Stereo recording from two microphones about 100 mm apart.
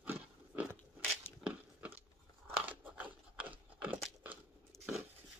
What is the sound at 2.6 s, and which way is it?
Crunch, 15° right (ahead or behind).